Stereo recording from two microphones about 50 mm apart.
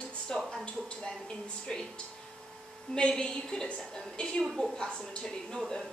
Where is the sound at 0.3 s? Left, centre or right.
Centre.